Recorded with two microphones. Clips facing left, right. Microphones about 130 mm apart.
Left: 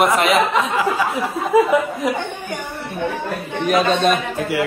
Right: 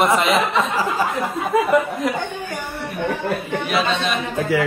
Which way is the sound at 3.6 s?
45° left (ahead or behind).